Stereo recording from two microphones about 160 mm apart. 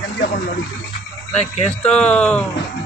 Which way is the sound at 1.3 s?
40° left (ahead or behind).